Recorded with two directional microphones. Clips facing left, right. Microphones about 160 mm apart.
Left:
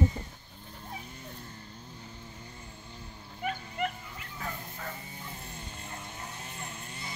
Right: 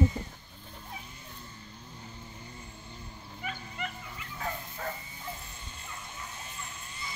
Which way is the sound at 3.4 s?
50° left (ahead or behind).